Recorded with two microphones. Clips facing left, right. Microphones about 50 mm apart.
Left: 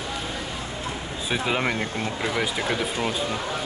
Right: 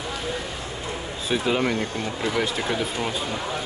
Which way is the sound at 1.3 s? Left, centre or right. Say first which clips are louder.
Right 2 dB; centre.